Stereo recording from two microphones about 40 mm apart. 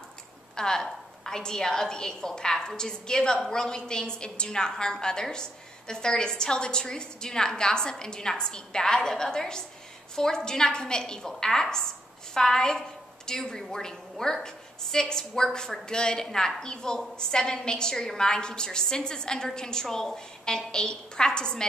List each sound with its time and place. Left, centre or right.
0.6 s a woman's voice: centre